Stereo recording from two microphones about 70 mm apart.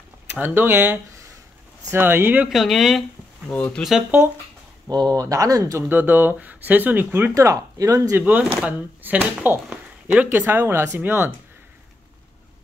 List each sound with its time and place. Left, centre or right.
0.3 s speech: right
2.5 s speech: centre
3.5 s speech: left
4.8 s speech: right
5.9 s speech: right
7.3 s speech: right
8.2 s speech: right